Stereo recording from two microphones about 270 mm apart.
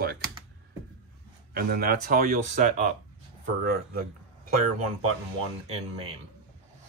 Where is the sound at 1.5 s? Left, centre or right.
Right.